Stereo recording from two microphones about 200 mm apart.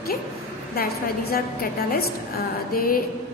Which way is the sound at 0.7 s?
50° left (ahead or behind).